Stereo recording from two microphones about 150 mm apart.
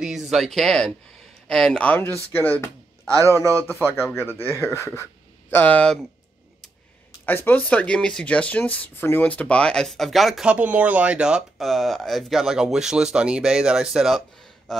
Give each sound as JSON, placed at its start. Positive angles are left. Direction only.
{"t": 0.0, "sound": "speech", "side_deg": -5}
{"t": 3.1, "sound": "a man's voice", "side_deg": -20}
{"t": 3.5, "sound": "speech", "side_deg": 15}
{"t": 4.0, "sound": "speech", "side_deg": 0}
{"t": 4.7, "sound": "speech", "side_deg": 15}
{"t": 7.2, "sound": "speech", "side_deg": 10}
{"t": 14.7, "sound": "a sound", "side_deg": 0}